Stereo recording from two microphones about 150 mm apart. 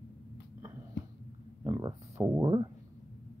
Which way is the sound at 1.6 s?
25° right (ahead or behind).